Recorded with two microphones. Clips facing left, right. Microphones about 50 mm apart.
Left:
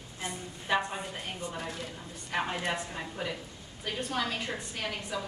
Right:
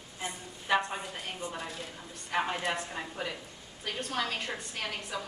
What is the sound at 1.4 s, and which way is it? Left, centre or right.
Speech, right.